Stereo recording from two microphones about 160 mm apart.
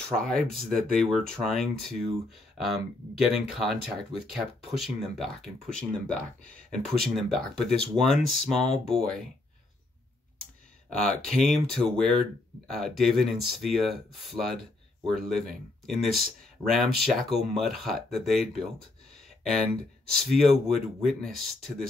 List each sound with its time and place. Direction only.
0.1 s speech: 5° left (ahead or behind)
10.9 s speech: 5° left (ahead or behind)
14.3 s speech: 25° right (ahead or behind)
15.0 s speech: centre (ahead or behind)
20.1 s speech: centre (ahead or behind)